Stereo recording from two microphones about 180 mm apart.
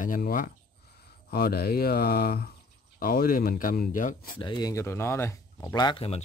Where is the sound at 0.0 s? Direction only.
50° left (ahead or behind).